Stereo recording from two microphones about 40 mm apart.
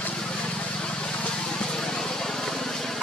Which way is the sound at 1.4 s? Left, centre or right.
Centre.